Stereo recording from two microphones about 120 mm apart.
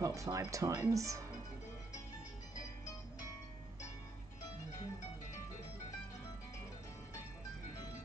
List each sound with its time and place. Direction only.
0.0 s speech: 25° right (ahead or behind)